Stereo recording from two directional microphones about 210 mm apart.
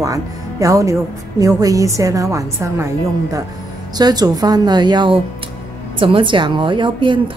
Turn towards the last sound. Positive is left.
turn(degrees=-25)  # may be behind; listen again after turning